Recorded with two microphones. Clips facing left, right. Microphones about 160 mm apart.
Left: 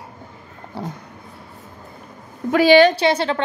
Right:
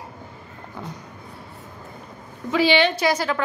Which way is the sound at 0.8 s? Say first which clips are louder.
Left 6 dB; 35° left (ahead or behind).